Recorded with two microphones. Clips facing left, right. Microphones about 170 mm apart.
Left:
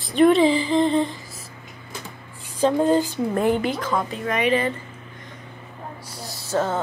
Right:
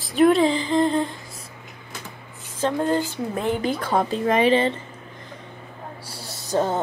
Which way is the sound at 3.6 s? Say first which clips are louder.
Right 2 dB; 35° right (ahead or behind).